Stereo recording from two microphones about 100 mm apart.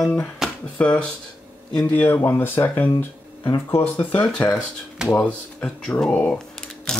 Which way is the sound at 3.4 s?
30° left (ahead or behind).